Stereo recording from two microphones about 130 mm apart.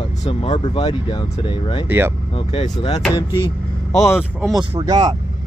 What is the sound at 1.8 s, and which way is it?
Speech, 15° right (ahead or behind).